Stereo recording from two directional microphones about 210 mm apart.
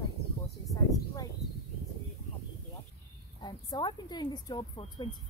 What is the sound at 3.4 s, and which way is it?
A woman's voice, 20° left (ahead or behind).